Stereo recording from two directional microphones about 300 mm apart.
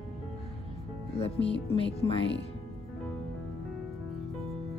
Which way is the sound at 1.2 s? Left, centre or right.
Centre.